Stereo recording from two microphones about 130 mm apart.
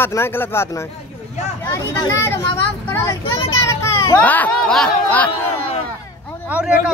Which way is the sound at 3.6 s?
25° left (ahead or behind).